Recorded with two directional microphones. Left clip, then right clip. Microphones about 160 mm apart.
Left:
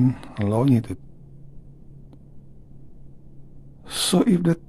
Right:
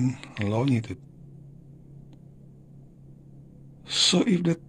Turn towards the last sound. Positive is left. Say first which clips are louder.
# left 3 dB
turn(degrees=25)  # may be behind; listen again after turning